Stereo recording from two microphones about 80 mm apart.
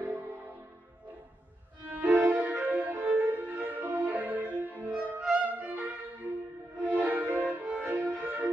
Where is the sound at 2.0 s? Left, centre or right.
Centre.